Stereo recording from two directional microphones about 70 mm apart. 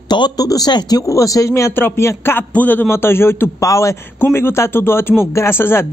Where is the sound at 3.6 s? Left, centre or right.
Left.